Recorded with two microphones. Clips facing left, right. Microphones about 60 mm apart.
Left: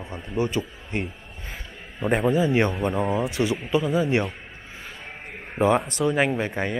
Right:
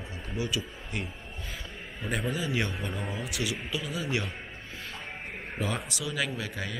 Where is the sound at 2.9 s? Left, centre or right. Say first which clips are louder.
Left 12 dB; left.